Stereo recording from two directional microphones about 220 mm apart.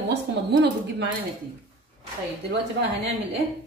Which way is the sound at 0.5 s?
50° right (ahead or behind).